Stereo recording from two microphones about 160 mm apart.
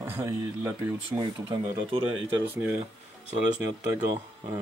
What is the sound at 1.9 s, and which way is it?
Speech, 35° right (ahead or behind).